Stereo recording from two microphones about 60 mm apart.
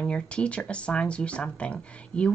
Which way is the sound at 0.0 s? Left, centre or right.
Centre.